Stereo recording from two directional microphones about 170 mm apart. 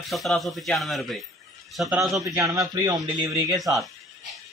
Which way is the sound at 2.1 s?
20° right (ahead or behind).